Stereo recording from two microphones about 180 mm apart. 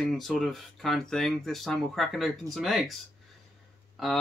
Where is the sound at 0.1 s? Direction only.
Centre (ahead or behind).